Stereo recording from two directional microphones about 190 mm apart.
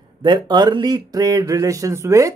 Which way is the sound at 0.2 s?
25° right (ahead or behind).